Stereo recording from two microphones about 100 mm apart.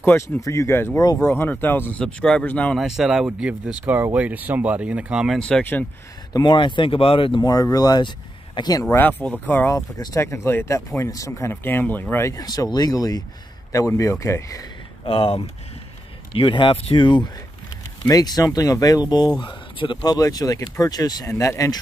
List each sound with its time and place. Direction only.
0.0 s speech: 20° left (ahead or behind)
2.8 s speech: 5° right (ahead or behind)
5.4 s speech: 15° left (ahead or behind)
6.3 s speech: 50° left (ahead or behind)
7.4 s speech: 40° left (ahead or behind)
8.8 s speech: 15° left (ahead or behind)
9.7 s speech: 35° left (ahead or behind)
15.0 s speech: 70° left (ahead or behind)
16.3 s speech: 60° left (ahead or behind)
17.0 s speech: 50° left (ahead or behind)
18.0 s speech: 40° left (ahead or behind)
19.4 s speech: 55° left (ahead or behind); by 21.7 s 30° left (ahead or behind)